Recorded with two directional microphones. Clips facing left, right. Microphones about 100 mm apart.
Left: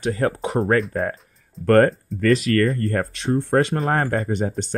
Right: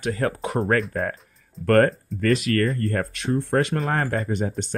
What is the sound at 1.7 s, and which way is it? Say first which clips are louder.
Speech: left 2 dB; 35° left (ahead or behind).